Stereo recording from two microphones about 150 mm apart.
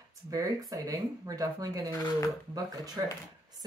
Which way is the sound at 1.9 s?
25° left (ahead or behind).